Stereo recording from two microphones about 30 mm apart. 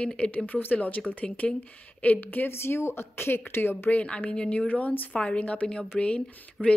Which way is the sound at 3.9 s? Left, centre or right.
Left.